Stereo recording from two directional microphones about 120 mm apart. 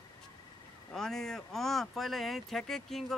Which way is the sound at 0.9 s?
5° left (ahead or behind).